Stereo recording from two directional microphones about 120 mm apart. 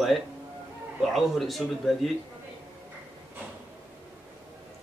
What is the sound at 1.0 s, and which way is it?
A man's voice, centre (ahead or behind).